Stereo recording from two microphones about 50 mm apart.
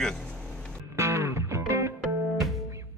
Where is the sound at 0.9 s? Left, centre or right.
Right.